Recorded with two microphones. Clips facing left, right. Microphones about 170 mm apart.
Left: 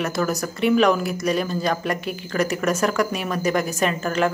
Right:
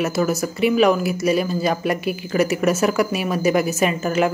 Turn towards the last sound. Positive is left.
turn(degrees=-10)  # may be behind; listen again after turning